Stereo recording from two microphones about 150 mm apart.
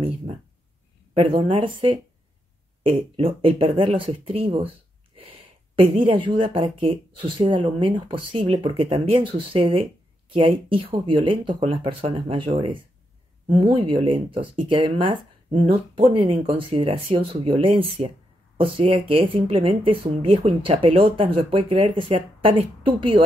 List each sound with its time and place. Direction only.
1.1 s speech: 35° right (ahead or behind)
5.8 s speech: 35° right (ahead or behind)